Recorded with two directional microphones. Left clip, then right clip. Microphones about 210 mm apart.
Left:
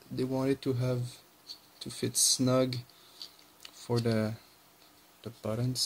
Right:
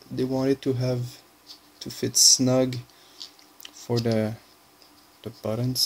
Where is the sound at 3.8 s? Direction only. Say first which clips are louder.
Right 6 dB; 5° left (ahead or behind).